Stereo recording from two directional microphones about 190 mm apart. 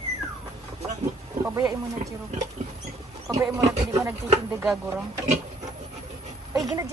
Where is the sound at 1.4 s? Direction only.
15° right (ahead or behind).